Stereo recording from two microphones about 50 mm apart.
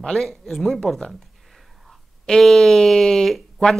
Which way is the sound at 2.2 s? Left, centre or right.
Centre.